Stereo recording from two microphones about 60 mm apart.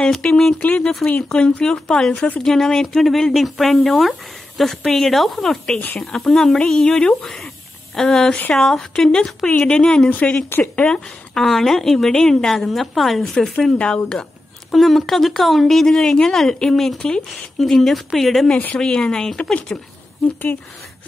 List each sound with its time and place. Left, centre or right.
0.0 s speech: centre
11.3 s speech: centre
13.7 s speech: centre
14.7 s speech: centre
18.8 s speech: centre